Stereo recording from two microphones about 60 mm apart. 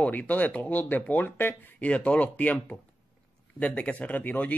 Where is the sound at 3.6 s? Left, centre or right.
Left.